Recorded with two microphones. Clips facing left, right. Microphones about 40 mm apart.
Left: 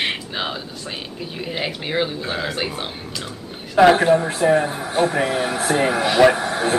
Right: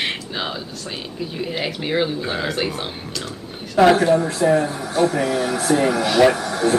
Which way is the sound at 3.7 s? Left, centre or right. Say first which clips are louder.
Left 1 dB; left.